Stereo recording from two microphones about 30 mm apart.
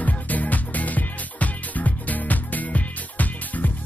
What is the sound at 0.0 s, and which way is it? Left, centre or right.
Music, left.